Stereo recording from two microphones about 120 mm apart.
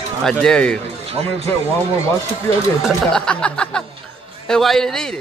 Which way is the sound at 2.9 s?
5° left (ahead or behind).